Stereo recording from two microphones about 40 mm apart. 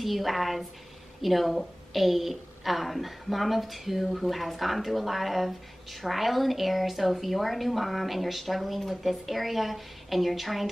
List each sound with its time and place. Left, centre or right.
0.0 s a woman's voice: centre